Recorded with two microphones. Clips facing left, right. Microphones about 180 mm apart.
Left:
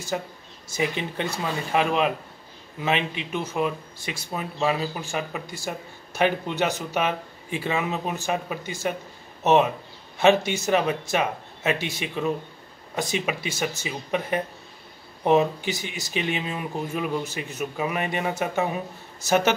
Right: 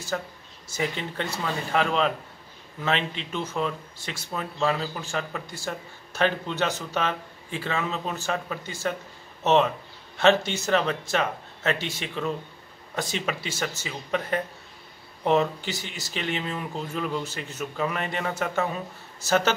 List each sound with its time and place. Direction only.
0.1 s speech: 15° left (ahead or behind)